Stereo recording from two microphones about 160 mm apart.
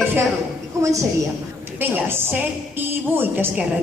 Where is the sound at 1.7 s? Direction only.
15° right (ahead or behind).